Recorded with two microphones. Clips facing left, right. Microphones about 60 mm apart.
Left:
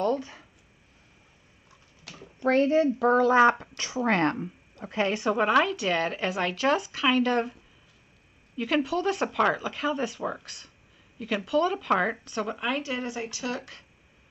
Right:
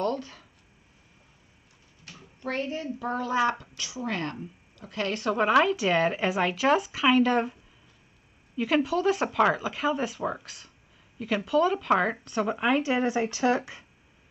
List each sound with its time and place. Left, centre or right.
0.0 s a sound: centre
2.0 s a child's voice: left
3.4 s speech: left
4.8 s a woman's voice: left; by 7.5 s centre
8.5 s a woman's voice: centre; by 13.7 s right